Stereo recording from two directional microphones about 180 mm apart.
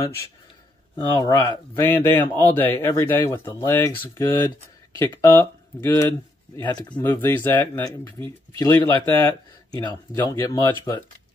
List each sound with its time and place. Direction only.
0.9 s speech: 20° left (ahead or behind)